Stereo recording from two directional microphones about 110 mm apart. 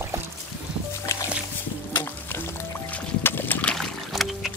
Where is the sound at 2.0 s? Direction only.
20° left (ahead or behind); by 4.5 s centre (ahead or behind).